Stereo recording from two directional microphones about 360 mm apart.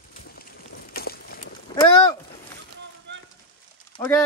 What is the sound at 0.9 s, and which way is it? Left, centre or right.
Boat, left.